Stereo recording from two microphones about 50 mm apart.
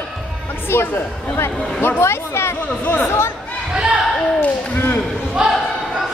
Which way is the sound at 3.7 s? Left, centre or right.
Centre.